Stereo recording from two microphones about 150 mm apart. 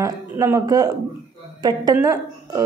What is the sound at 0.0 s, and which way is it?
Speech, 20° right (ahead or behind).